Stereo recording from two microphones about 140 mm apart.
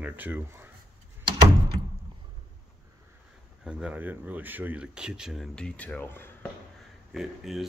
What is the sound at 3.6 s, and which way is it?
Speech, 5° right (ahead or behind).